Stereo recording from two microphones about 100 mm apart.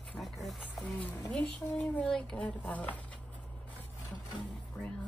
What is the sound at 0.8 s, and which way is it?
Speech, 15° left (ahead or behind).